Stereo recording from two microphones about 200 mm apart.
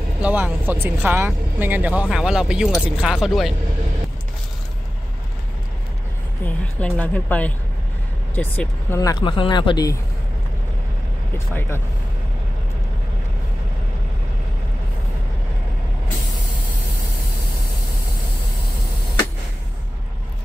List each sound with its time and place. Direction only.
0.2 s speech: 10° right (ahead or behind)
6.4 s a woman's voice: 5° left (ahead or behind)
8.9 s speech: 20° left (ahead or behind)
11.3 s a woman's voice: 10° left (ahead or behind)